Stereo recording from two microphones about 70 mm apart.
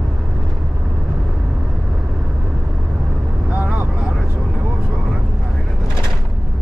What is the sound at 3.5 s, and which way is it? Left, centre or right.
Vehicle, centre.